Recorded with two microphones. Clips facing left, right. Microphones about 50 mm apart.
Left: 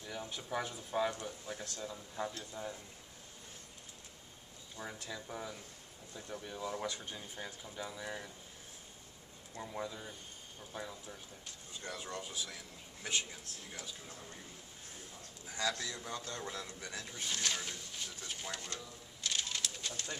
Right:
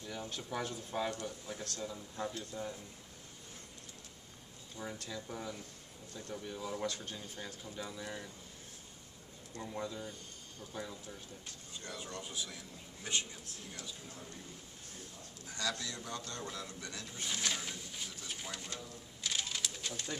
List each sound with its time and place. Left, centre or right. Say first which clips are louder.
0.0 s speech: right 1 dB; centre
4.7 s speech: right 1 dB; centre
9.6 s speech: right 1 dB; centre
11.8 s a man's voice: left 2 dB; centre
15.4 s a man's voice: left 2 dB; left
17.2 s a sound: even; centre
19.2 s bird: even; centre